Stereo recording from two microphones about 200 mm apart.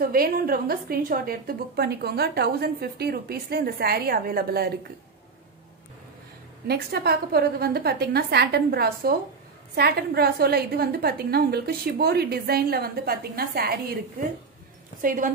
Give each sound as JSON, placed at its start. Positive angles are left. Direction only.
{"t": 0.0, "sound": "a woman's voice", "side_deg": -45}
{"t": 6.7, "sound": "a woman's voice", "side_deg": -50}
{"t": 15.0, "sound": "a woman's voice", "side_deg": -40}